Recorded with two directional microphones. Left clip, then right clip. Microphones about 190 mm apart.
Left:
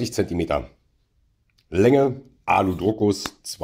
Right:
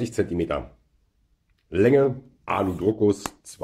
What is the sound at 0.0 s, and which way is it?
Speech, 35° left (ahead or behind).